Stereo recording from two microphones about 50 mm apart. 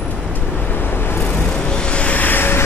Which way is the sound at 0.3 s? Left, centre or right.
Left.